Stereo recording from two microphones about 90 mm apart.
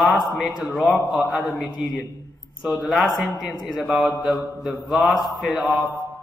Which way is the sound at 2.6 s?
5° right (ahead or behind).